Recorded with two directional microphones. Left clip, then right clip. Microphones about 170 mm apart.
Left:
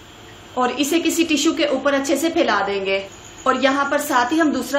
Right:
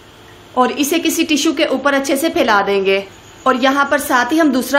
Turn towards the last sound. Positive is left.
turn(degrees=-40)  # may be behind; listen again after turning